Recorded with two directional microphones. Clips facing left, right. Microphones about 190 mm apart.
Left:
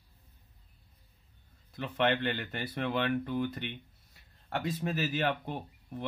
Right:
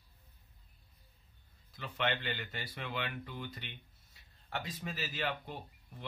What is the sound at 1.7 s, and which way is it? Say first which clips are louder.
Speech: left 7 dB; 55° left (ahead or behind).